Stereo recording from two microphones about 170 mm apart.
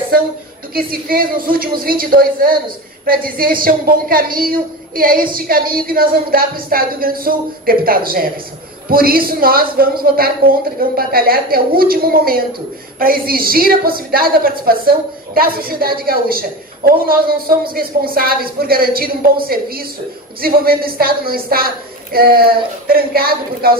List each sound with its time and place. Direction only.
0.7 s a woman's voice: 60° right (ahead or behind)